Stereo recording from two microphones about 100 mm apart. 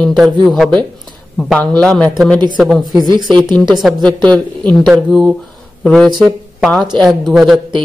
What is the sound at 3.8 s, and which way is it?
A man's voice, 5° left (ahead or behind).